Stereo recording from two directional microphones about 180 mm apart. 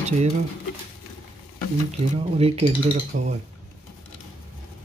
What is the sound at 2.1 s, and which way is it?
Speech, 35° right (ahead or behind).